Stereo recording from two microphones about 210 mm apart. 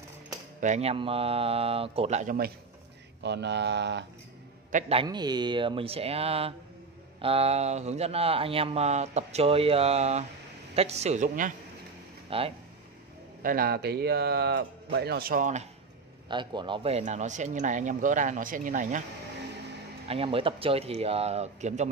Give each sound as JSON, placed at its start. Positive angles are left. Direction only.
{"t": 0.6, "sound": "speech", "side_deg": -35}
{"t": 3.2, "sound": "speech", "side_deg": -55}
{"t": 4.7, "sound": "a man's voice", "side_deg": -30}
{"t": 12.3, "sound": "speech", "side_deg": -25}
{"t": 13.4, "sound": "speech", "side_deg": -45}
{"t": 16.3, "sound": "a man's voice", "side_deg": -20}
{"t": 20.1, "sound": "speech", "side_deg": -25}